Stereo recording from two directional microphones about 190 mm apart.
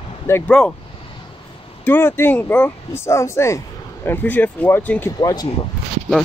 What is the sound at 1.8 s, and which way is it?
Speech, 10° left (ahead or behind).